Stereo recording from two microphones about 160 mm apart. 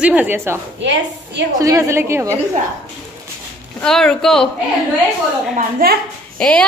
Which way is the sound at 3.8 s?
5° left (ahead or behind).